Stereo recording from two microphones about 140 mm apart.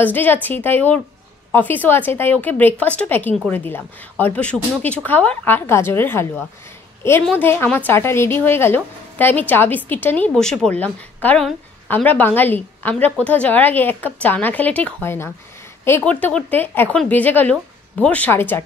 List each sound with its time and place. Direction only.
0.0 s a woman's voice: 15° left (ahead or behind)